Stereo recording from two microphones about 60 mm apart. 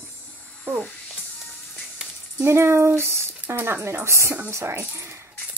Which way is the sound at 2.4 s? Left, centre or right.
Right.